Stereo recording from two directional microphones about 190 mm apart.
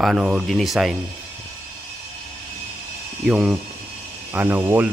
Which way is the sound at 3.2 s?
Centre (ahead or behind).